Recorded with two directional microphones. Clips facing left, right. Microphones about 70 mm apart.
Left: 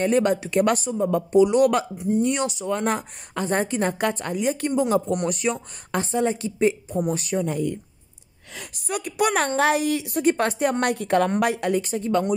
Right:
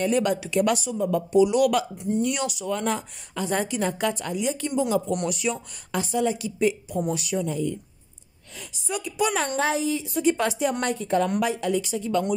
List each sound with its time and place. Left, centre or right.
0.0 s a woman's voice: left